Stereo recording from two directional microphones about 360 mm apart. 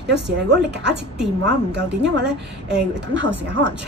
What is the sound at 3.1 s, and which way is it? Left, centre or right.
Speech, right.